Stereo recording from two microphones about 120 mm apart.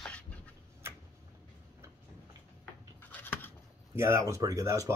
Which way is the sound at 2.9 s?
15° left (ahead or behind).